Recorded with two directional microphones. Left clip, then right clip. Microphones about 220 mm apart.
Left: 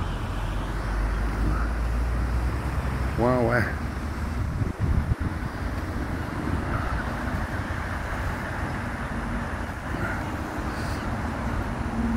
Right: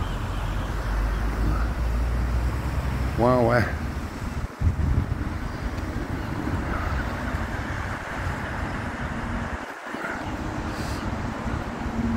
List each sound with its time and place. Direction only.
3.2 s speech: 10° right (ahead or behind)